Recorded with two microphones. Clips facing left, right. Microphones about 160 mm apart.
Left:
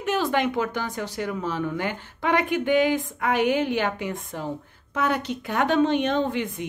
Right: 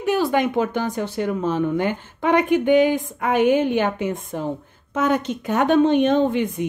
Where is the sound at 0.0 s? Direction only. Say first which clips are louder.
Right 4 dB; 15° right (ahead or behind).